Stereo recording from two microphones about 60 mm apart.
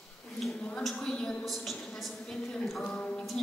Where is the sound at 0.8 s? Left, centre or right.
Centre.